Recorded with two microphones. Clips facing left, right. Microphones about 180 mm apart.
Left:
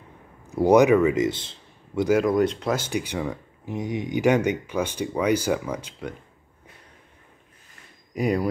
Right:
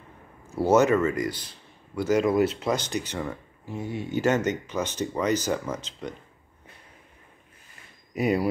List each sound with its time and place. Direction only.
0.5 s speech: 15° left (ahead or behind)
2.0 s speech: centre (ahead or behind)
2.7 s speech: 10° left (ahead or behind)
8.1 s speech: 5° right (ahead or behind)